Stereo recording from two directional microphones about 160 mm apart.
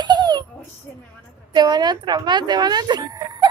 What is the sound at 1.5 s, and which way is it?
Speech, 25° right (ahead or behind).